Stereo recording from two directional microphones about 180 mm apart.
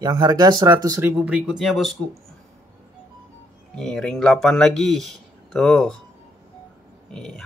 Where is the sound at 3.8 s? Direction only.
5° left (ahead or behind).